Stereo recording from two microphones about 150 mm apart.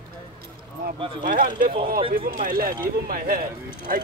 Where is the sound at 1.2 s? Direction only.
70° right (ahead or behind).